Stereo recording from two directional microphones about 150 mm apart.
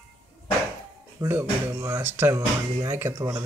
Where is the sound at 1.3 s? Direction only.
15° right (ahead or behind).